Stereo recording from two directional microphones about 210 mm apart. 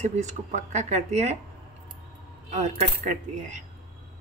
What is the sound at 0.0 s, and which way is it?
Speech, 35° right (ahead or behind).